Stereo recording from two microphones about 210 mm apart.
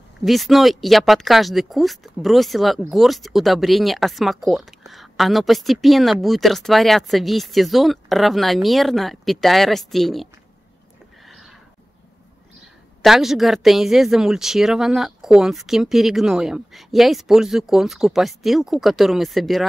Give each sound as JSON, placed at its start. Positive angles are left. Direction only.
{"t": 0.2, "sound": "speech", "side_deg": 0}
{"t": 11.2, "sound": "a sound", "side_deg": 0}
{"t": 13.0, "sound": "speech", "side_deg": 0}